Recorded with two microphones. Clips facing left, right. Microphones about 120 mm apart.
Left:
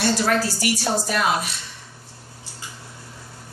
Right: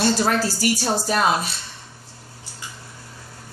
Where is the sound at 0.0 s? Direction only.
30° right (ahead or behind).